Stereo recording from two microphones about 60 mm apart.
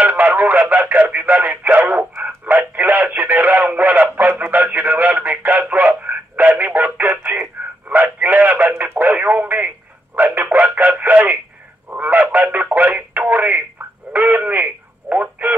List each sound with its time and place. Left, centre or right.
0.0 s speech: right
3.7 s radio: right
11.9 s fowl: right
12.7 s radio: right
13.3 s telephone: right
14.1 s radio: right